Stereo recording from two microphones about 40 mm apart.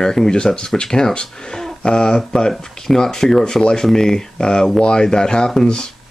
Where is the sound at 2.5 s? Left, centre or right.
Centre.